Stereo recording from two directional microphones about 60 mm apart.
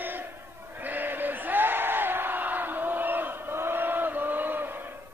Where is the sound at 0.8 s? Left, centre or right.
Right.